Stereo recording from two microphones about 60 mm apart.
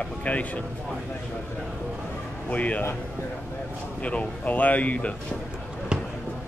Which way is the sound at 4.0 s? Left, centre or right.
Left.